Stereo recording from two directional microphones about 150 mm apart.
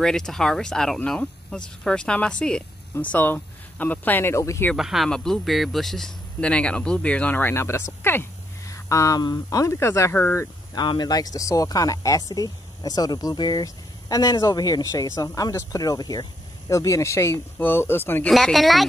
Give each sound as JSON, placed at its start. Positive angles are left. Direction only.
{"t": 0.0, "sound": "speech", "side_deg": 5}
{"t": 4.7, "sound": "speech", "side_deg": 0}
{"t": 10.7, "sound": "speech", "side_deg": 30}
{"t": 18.3, "sound": "speech", "side_deg": 0}